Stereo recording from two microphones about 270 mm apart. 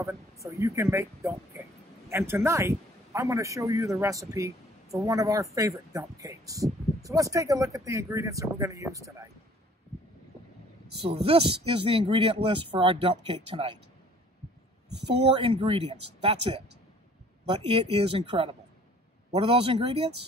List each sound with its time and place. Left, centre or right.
0.0 s a man's voice: centre
11.1 s speech: right
15.3 s speech: centre
17.7 s speech: right